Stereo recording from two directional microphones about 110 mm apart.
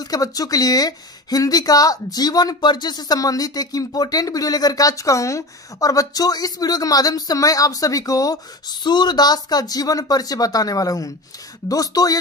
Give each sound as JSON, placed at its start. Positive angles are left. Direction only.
{"t": 0.0, "sound": "speech", "side_deg": 35}